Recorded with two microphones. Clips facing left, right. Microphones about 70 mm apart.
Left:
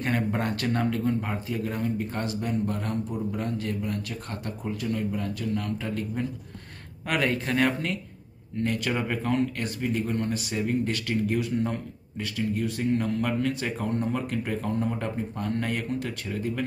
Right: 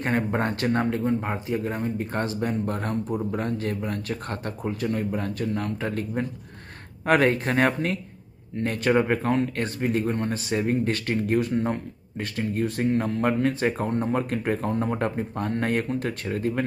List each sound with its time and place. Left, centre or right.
0.0 s speech: right